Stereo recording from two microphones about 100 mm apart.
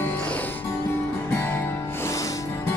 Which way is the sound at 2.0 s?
35° left (ahead or behind).